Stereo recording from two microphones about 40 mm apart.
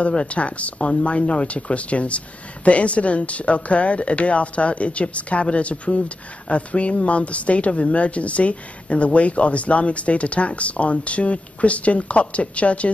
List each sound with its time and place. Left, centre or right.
0.0 s speech: left